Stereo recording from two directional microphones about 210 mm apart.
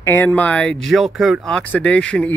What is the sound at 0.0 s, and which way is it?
Speech, 10° left (ahead or behind).